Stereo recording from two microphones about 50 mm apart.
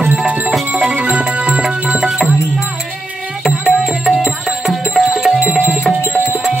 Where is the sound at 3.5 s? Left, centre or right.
Centre.